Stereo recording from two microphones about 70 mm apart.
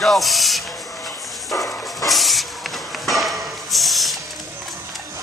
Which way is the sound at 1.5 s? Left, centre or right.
Left.